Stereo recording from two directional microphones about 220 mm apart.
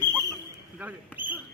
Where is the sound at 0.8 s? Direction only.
5° right (ahead or behind).